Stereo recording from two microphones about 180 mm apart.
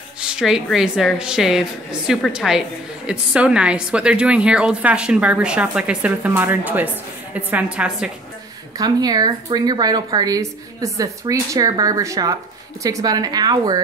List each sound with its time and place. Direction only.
0.2 s a woman's voice: 5° right (ahead or behind)
8.7 s speech: 20° right (ahead or behind)